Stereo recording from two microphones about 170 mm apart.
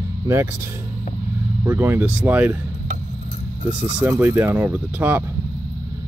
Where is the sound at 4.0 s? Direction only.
10° right (ahead or behind).